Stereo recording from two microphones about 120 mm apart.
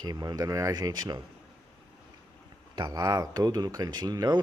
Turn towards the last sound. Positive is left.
turn(degrees=-35)  # may be behind; listen again after turning